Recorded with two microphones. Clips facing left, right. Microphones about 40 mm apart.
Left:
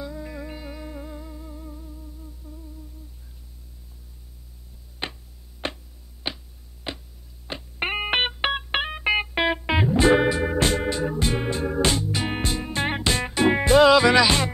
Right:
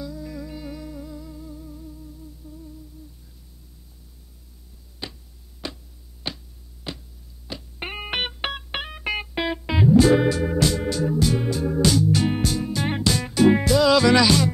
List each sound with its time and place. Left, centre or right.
0.0 s music: left
2.2 s humming: left
5.0 s a sound: left
6.2 s a sound: left
7.4 s music: left; by 8.5 s centre
8.5 s music: left
12.1 s music: centre
12.4 s music: left